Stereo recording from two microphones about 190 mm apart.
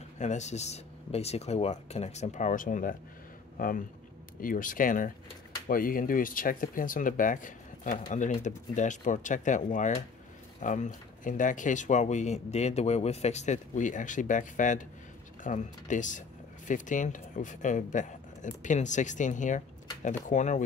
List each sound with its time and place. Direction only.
0.2 s a man's voice: 40° left (ahead or behind)